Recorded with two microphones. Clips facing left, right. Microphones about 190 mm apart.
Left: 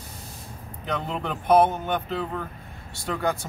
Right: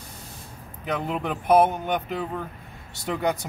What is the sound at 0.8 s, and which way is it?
Speech, 5° right (ahead or behind).